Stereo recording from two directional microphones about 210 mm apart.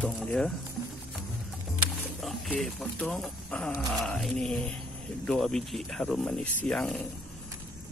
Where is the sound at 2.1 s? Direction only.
Centre (ahead or behind).